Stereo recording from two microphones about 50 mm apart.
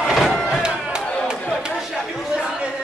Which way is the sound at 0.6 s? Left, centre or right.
Centre.